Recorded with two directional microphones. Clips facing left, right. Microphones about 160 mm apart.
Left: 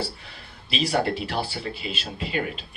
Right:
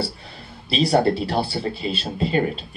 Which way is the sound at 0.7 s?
35° right (ahead or behind).